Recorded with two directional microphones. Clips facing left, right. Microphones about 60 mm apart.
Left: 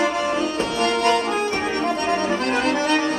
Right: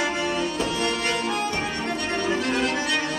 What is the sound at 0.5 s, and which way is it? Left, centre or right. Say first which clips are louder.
Music: left 4 dB; left.